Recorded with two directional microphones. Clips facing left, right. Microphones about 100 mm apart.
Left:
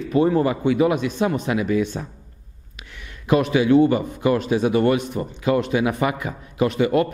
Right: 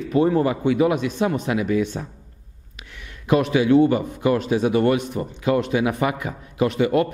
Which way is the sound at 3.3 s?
15° left (ahead or behind).